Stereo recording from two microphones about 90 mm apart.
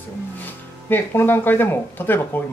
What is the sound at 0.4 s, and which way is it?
Speech, 20° left (ahead or behind).